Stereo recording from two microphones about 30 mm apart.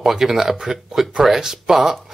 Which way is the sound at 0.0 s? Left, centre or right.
Centre.